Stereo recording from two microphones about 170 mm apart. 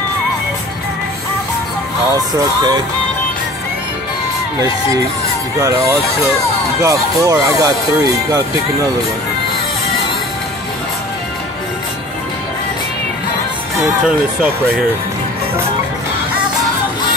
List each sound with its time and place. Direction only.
2.1 s speech: 25° right (ahead or behind)
5.6 s speech: 20° right (ahead or behind)
13.8 s speech: 5° right (ahead or behind)